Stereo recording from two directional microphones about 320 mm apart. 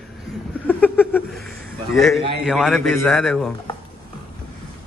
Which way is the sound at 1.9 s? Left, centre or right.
Centre.